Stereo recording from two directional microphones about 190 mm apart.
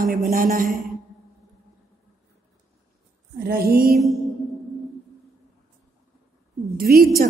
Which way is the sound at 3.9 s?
Centre (ahead or behind).